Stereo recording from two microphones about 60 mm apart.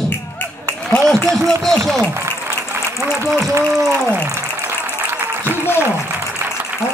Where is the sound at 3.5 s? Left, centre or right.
Right.